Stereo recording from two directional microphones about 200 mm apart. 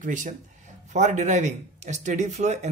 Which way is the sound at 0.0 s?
40° right (ahead or behind).